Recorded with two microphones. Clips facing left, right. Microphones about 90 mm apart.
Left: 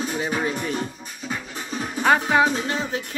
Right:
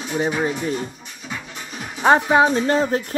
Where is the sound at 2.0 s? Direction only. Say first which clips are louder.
Right 4 dB; 25° right (ahead or behind).